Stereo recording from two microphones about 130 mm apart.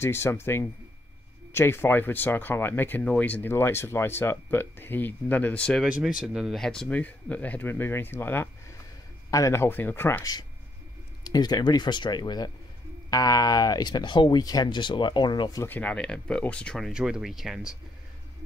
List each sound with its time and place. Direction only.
0.0 s speech: 20° left (ahead or behind)
5.9 s speech: 10° right (ahead or behind); by 10.2 s 15° left (ahead or behind)
11.2 s speech: 30° left (ahead or behind)
15.6 s speech: 15° left (ahead or behind); by 17.7 s 5° right (ahead or behind)